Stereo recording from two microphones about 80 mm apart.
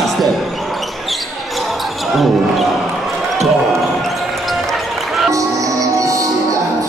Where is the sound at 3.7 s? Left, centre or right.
Centre.